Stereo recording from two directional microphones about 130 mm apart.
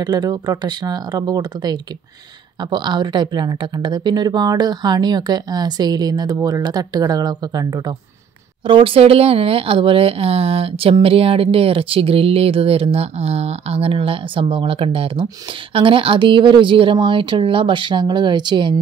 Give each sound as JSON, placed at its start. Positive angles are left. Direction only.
{"t": 0.0, "sound": "a woman's voice", "side_deg": -30}
{"t": 8.6, "sound": "a woman's voice", "side_deg": -40}